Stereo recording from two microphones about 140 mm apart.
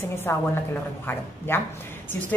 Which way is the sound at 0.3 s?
20° left (ahead or behind).